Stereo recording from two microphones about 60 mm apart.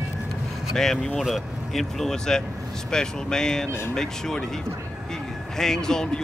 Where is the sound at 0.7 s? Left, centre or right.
Centre.